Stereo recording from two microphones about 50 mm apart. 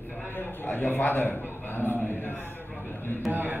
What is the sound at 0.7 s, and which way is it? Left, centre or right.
A man's voice, left.